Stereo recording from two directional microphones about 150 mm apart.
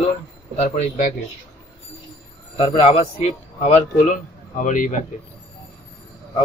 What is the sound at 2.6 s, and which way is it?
A man's voice, 45° left (ahead or behind).